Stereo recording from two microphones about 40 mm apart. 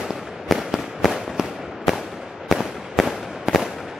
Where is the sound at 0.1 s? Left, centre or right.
Centre.